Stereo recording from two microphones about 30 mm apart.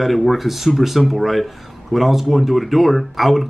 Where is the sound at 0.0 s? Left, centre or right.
Centre.